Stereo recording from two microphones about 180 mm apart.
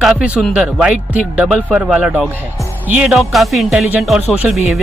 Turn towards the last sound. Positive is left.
turn(degrees=0)  # may be behind; listen again after turning